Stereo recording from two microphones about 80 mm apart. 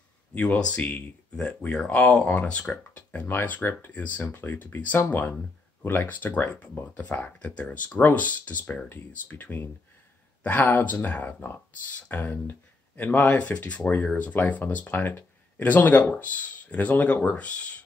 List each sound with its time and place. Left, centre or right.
0.3 s speech: centre